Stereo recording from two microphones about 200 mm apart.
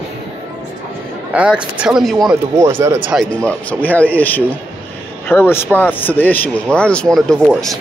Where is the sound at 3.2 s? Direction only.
5° left (ahead or behind).